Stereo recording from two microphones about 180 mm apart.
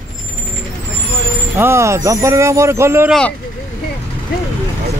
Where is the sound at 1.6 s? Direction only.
15° right (ahead or behind).